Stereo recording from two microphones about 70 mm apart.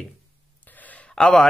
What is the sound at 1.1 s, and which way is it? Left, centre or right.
Speech, centre.